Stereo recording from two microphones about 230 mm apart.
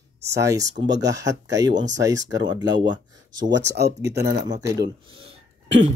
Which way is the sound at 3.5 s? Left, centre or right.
Right.